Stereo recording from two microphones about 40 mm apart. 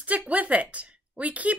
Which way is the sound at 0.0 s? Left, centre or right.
Right.